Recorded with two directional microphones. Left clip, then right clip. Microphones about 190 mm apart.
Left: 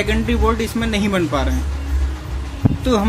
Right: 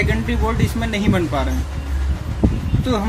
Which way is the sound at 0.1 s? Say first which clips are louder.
Left 4 dB; 20° left (ahead or behind).